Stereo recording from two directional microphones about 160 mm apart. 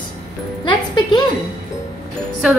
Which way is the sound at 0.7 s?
25° left (ahead or behind).